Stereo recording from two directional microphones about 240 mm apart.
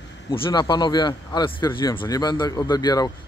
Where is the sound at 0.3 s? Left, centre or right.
Centre.